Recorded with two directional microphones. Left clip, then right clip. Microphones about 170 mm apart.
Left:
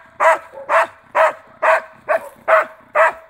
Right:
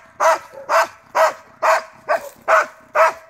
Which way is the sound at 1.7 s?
35° left (ahead or behind).